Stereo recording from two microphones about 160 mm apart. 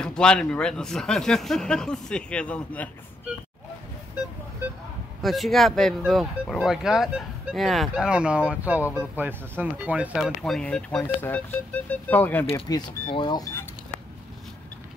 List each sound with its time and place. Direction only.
0.0 s speech: 5° left (ahead or behind)
5.2 s speech: centre (ahead or behind)
12.6 s speech: 25° left (ahead or behind)